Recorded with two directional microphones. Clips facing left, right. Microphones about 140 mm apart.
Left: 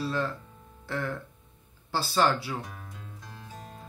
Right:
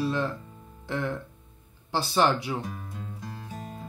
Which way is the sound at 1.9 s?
20° right (ahead or behind).